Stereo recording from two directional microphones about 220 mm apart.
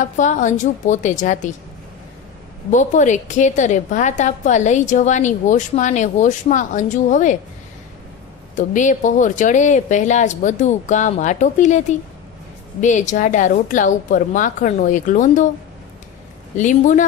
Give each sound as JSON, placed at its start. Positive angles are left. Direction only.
{"t": 0.0, "sound": "a woman's voice", "side_deg": 35}
{"t": 2.7, "sound": "a woman's voice", "side_deg": 35}
{"t": 8.5, "sound": "a woman's voice", "side_deg": 35}
{"t": 12.8, "sound": "a woman's voice", "side_deg": 35}
{"t": 16.5, "sound": "a woman's voice", "side_deg": 35}